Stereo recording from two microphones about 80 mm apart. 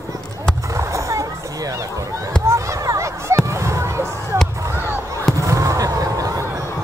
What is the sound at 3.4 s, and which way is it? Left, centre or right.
Fireworks, right.